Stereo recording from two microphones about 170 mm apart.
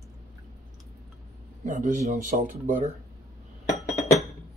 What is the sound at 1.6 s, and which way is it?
Speech, 45° right (ahead or behind).